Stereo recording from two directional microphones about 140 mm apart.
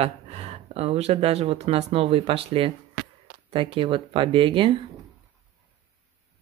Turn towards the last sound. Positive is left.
turn(degrees=-40)  # may be behind; listen again after turning